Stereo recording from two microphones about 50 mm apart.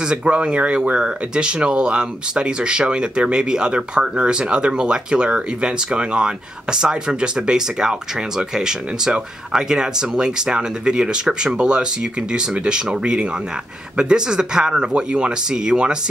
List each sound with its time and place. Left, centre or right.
0.0 s speech: centre